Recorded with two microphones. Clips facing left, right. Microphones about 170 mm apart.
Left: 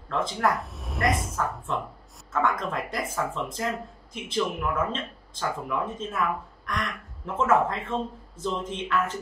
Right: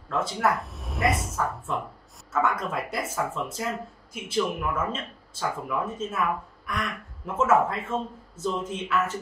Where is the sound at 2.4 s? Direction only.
5° right (ahead or behind).